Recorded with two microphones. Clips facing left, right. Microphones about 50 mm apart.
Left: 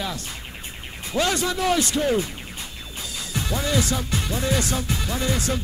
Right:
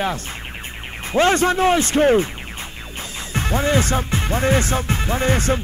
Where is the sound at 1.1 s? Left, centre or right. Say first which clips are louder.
Right 7 dB; right.